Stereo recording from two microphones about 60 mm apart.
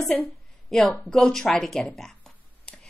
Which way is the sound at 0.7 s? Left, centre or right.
Centre.